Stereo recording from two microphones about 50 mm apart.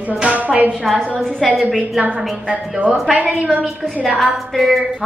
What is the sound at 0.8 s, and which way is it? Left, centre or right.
Speech, centre.